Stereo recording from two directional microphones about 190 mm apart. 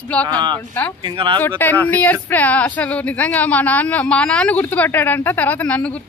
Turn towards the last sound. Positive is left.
turn(degrees=5)  # may be behind; listen again after turning